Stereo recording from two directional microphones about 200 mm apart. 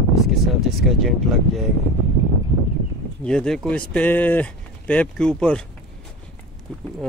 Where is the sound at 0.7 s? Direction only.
Centre (ahead or behind).